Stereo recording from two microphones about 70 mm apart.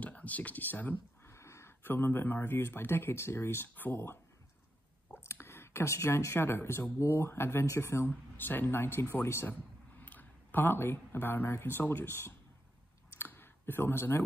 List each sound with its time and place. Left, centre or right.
0.0 s speech: left
1.3 s a sound: left
1.8 s speech: left
8.4 s speech: left
13.1 s clicking: left